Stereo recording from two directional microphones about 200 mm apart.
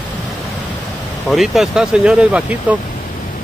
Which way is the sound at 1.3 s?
Centre (ahead or behind).